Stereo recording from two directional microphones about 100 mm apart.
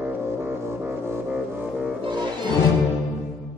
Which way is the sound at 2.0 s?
50° right (ahead or behind).